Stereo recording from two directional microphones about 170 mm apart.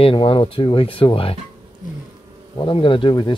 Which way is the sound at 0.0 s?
30° left (ahead or behind).